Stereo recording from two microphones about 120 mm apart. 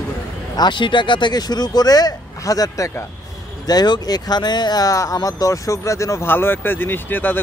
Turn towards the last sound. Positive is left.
turn(degrees=15)  # may be behind; listen again after turning